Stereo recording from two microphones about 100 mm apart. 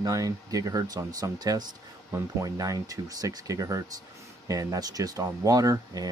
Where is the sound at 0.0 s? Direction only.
35° right (ahead or behind).